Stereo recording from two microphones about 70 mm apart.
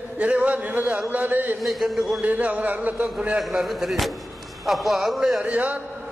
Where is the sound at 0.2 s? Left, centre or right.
Centre.